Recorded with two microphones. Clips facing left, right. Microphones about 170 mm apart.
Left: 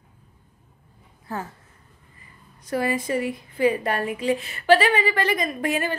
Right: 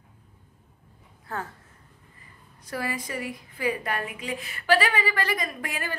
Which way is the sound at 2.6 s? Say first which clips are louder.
Left 7 dB; 25° left (ahead or behind).